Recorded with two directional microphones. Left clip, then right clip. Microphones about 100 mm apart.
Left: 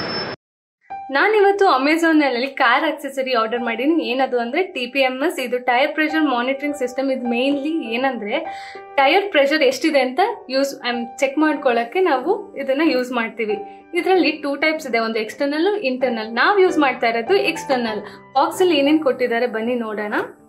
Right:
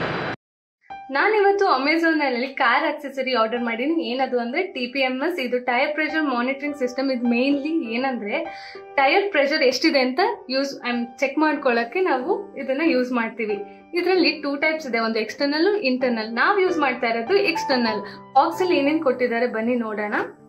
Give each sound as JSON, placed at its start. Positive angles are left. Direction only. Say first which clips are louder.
{"t": 1.1, "sound": "a woman's voice", "louder": "left 3 dB", "side_deg": 30}
{"t": 7.0, "sound": "a woman's voice", "louder": "left 2 dB", "side_deg": 10}
{"t": 10.6, "sound": "a woman's voice", "louder": "left 4 dB", "side_deg": 35}
{"t": 11.3, "sound": "a woman's voice", "louder": "left 2 dB", "side_deg": 10}
{"t": 12.0, "sound": "a woman's voice", "louder": "left 4 dB", "side_deg": 30}
{"t": 13.9, "sound": "a woman's voice", "louder": "left 3 dB", "side_deg": 20}
{"t": 16.5, "sound": "a woman's voice", "louder": "left 5 dB", "side_deg": 40}
{"t": 16.8, "sound": "a woman's voice", "louder": "left 4 dB", "side_deg": 30}
{"t": 17.6, "sound": "a woman's voice", "louder": "left 1 dB", "side_deg": 10}
{"t": 18.8, "sound": "a woman's voice", "louder": "left 3 dB", "side_deg": 30}